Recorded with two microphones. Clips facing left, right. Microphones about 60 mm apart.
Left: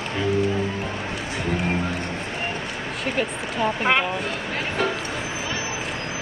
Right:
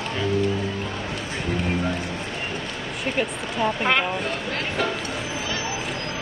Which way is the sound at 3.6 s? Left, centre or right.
Centre.